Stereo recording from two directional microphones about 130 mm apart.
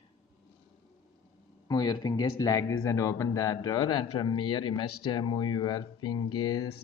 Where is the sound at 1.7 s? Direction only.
30° left (ahead or behind).